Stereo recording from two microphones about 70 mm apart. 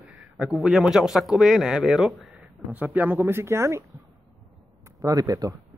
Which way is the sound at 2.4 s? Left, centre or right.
Right.